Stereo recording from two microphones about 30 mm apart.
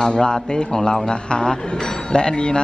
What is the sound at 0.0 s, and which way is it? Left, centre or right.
Speech, centre.